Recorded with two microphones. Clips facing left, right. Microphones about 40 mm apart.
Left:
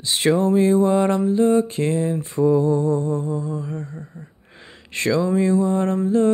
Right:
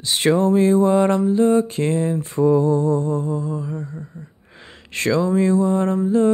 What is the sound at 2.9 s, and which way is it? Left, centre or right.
Music, right.